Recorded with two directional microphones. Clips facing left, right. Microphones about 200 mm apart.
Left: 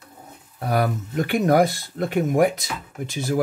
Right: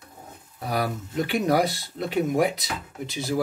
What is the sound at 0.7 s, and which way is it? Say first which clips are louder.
Speech: left 4 dB; 50° left (ahead or behind).